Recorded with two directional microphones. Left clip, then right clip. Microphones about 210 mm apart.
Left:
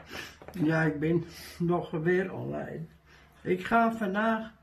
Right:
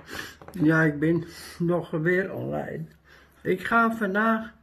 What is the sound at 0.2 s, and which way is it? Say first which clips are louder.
Speech: right 6 dB; 30° right (ahead or behind).